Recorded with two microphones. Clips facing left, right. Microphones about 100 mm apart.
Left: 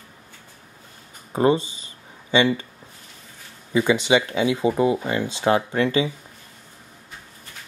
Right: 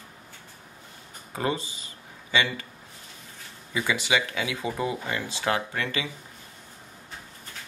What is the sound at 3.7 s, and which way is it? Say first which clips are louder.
Speech: left 8 dB; 25° left (ahead or behind).